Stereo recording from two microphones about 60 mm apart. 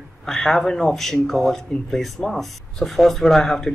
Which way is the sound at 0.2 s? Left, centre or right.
Centre.